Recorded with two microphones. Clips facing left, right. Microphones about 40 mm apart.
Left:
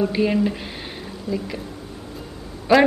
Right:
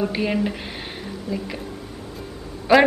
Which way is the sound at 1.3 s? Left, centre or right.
Left.